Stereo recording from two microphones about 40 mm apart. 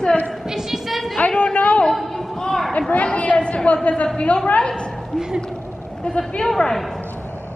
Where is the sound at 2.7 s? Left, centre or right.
Left.